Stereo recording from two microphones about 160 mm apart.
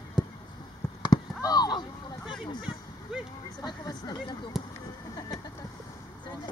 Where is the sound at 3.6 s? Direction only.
25° left (ahead or behind).